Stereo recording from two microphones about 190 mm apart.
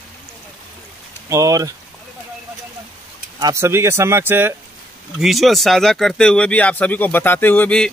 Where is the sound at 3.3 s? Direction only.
15° right (ahead or behind).